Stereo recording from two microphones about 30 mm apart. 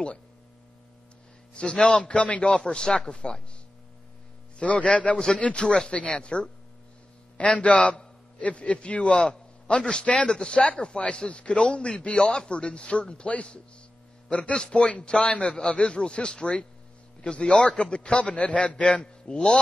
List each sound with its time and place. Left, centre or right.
1.5 s a man's voice: left
2.6 s speech: left
3.2 s a man's voice: left
4.6 s a man's voice: left
14.7 s a man's voice: left